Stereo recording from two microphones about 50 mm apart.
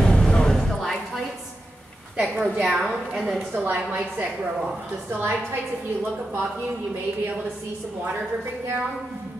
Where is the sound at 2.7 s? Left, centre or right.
Centre.